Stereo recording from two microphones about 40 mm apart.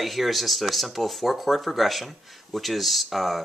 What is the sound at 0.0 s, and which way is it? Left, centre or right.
Speech, centre.